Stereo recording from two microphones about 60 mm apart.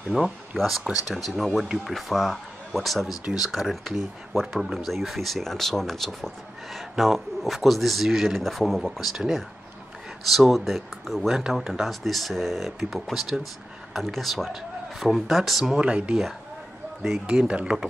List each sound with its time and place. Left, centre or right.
0.1 s speech: centre
0.6 s speech: centre
10.3 s speech: centre
15.7 s speech: centre
17.3 s speech: centre